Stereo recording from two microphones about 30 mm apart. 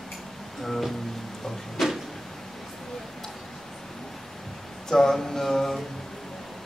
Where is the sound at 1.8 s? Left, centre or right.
Centre.